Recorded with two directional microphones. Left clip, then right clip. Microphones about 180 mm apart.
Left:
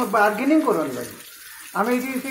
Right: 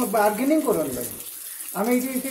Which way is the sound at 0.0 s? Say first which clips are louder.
Left 2 dB; 15° right (ahead or behind).